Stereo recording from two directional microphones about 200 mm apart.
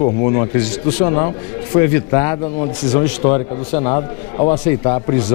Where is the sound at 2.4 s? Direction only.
25° left (ahead or behind).